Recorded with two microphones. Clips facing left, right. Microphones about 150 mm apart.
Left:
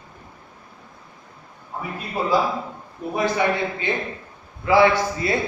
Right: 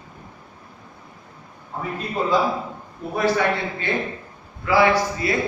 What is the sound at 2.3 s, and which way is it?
Speech, 5° left (ahead or behind).